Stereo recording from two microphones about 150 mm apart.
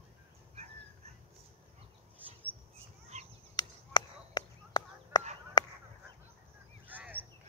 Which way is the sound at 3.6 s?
30° left (ahead or behind).